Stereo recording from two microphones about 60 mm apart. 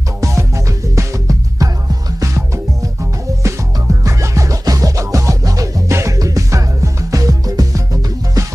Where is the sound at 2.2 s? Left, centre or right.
Right.